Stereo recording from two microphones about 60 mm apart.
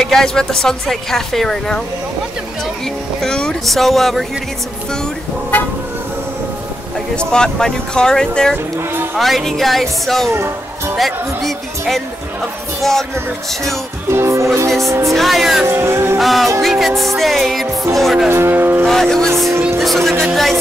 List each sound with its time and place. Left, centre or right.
0.0 s speech: centre
3.2 s speech: centre
7.2 s speech: centre
9.1 s speech: centre
14.1 s speech: right
15.1 s speech: centre
15.6 s music: right
16.2 s speech: centre
18.3 s music: right
18.9 s speech: centre